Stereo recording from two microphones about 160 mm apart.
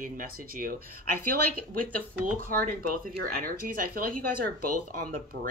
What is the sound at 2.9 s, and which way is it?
Speech, 65° right (ahead or behind).